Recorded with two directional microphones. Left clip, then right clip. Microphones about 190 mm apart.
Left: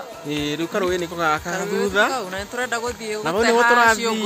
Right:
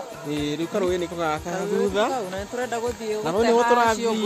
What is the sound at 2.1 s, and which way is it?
Speech, 20° right (ahead or behind).